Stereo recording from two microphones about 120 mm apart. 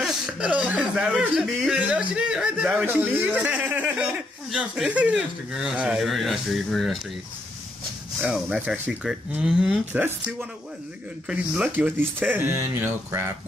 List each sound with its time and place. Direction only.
0.0 s speech: 10° right (ahead or behind)
8.3 s speech: 10° right (ahead or behind)
11.2 s speech: 10° right (ahead or behind)